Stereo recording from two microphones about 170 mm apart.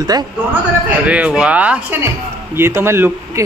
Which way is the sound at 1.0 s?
5° right (ahead or behind).